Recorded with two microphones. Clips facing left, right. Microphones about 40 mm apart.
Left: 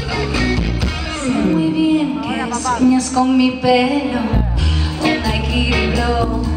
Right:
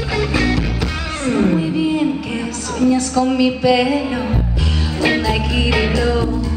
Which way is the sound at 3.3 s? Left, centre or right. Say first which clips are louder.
Left 1 dB; centre.